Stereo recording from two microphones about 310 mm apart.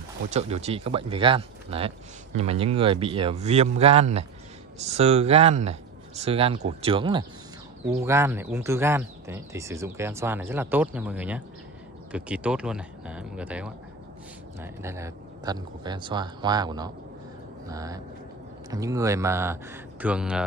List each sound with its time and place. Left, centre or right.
0.3 s speech: right; by 20.4 s centre